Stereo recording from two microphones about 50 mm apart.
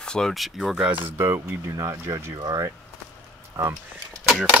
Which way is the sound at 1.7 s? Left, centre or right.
Right.